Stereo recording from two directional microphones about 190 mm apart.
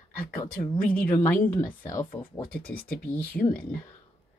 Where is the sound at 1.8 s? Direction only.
25° left (ahead or behind).